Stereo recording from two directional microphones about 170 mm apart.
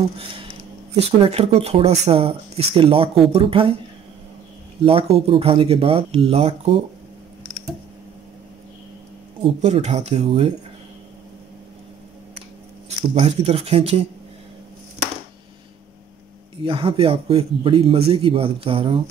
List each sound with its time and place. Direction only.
0.2 s a sound: 30° right (ahead or behind)
0.9 s speech: 35° right (ahead or behind)
4.8 s speech: 35° right (ahead or behind)
9.4 s speech: 40° right (ahead or behind)
13.2 s speech: 35° right (ahead or behind)
16.6 s speech: 30° right (ahead or behind)